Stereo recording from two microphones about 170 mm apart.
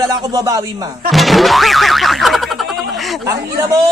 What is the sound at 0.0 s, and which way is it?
Speech, 20° right (ahead or behind).